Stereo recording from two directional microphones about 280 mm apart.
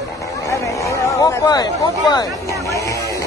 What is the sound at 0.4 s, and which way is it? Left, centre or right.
Chatter, centre.